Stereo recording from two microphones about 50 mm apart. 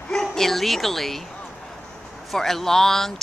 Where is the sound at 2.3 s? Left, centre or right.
Centre.